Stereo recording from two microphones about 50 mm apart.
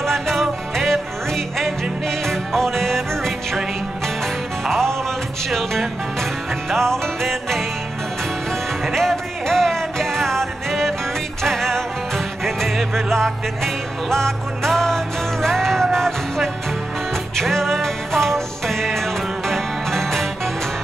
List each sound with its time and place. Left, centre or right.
0.0 s music: centre
4.6 s music: centre
8.8 s music: centre